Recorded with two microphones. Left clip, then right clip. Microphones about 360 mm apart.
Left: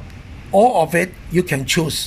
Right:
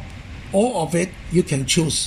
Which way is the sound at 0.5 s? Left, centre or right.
Left.